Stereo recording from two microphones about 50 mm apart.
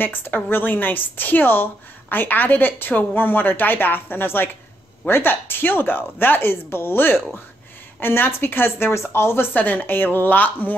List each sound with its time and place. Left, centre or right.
0.0 s a woman's voice: left
9.5 s a woman's voice: left